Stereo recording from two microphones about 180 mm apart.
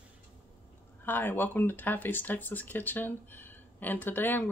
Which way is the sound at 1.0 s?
10° left (ahead or behind).